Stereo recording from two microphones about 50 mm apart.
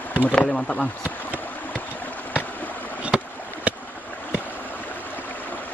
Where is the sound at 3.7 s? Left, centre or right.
Right.